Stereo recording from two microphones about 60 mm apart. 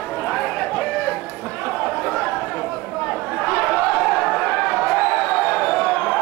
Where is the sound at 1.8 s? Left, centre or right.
Centre.